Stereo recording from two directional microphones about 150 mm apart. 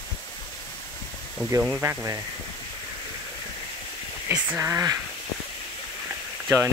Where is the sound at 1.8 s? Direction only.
20° right (ahead or behind).